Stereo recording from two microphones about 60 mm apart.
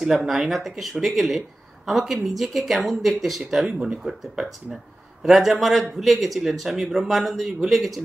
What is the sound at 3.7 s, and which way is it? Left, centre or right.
A man's voice, centre.